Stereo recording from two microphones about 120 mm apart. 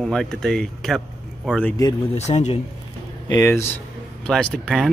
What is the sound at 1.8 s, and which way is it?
Speech, 30° left (ahead or behind).